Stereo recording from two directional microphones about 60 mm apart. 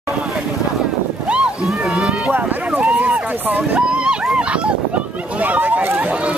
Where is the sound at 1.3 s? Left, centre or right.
Centre.